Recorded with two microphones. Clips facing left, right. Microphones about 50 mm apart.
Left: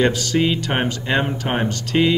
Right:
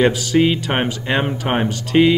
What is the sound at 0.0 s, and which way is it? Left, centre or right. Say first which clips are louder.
Speech: right 3 dB; centre.